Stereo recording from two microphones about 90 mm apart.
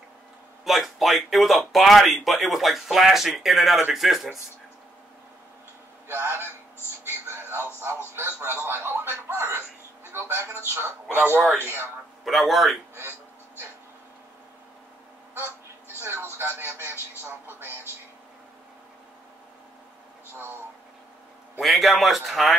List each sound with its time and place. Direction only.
0.7 s speech: centre (ahead or behind)
6.0 s speech: 25° right (ahead or behind)
7.1 s music: 25° right (ahead or behind)
8.2 s a sound: 25° right (ahead or behind)
10.1 s speech: 25° right (ahead or behind)
12.3 s speech: centre (ahead or behind)
16.0 s radio: 30° right (ahead or behind)
17.2 s speech: 30° right (ahead or behind)
21.5 s speech: centre (ahead or behind)